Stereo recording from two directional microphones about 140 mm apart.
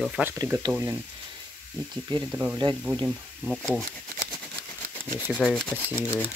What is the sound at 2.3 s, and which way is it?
Speech, 10° right (ahead or behind).